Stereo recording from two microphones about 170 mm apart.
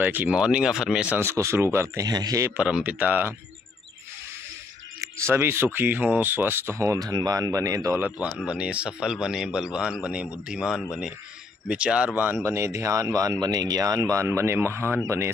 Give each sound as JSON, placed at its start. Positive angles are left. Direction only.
{"t": 0.0, "sound": "speech", "side_deg": -10}
{"t": 2.5, "sound": "speech", "side_deg": -5}
{"t": 5.0, "sound": "speech", "side_deg": -15}